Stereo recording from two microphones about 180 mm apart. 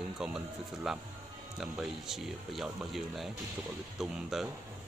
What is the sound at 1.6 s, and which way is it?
Speech, centre (ahead or behind).